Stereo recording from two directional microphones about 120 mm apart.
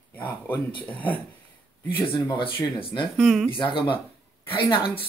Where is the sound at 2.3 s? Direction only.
45° left (ahead or behind).